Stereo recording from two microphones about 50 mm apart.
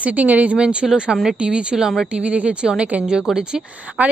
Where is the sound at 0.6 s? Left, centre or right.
Centre.